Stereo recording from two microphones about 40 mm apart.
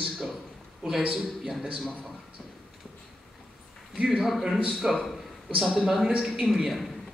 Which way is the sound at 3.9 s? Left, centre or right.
Centre.